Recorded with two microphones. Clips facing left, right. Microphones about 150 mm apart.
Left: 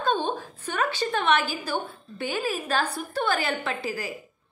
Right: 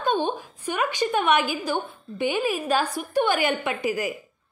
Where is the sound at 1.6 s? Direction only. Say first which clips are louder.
Right 3 dB; 15° right (ahead or behind).